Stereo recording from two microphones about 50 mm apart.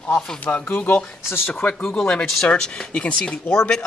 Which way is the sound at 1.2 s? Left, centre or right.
Left.